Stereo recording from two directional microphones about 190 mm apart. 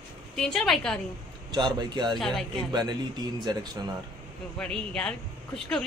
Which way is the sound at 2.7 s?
20° right (ahead or behind).